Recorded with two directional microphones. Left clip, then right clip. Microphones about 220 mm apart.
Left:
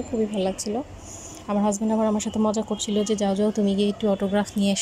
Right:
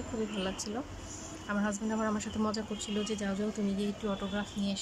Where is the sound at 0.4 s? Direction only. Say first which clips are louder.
Left 10 dB; 20° left (ahead or behind).